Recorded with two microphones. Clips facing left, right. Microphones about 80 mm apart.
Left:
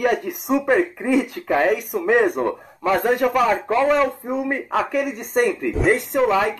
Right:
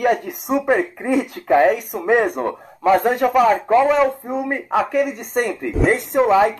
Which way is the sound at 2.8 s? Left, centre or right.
Centre.